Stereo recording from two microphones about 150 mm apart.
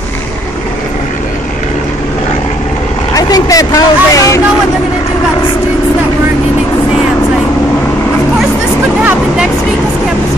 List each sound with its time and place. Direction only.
3.2 s speech: 25° left (ahead or behind)